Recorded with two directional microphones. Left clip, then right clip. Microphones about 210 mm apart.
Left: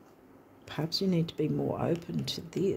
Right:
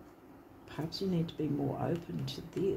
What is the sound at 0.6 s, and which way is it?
Speech, 55° left (ahead or behind).